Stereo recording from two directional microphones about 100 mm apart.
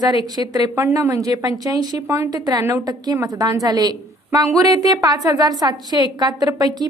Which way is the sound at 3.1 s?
35° right (ahead or behind).